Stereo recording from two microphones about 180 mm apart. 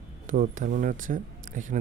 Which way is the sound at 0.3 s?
50° right (ahead or behind).